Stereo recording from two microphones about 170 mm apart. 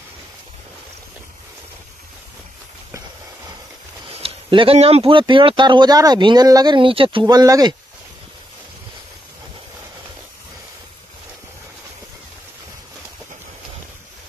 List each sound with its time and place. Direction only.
4.1 s a man's voice: 35° right (ahead or behind)